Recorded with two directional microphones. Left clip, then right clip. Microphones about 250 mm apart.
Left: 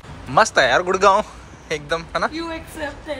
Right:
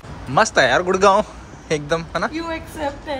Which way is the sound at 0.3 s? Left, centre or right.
Centre.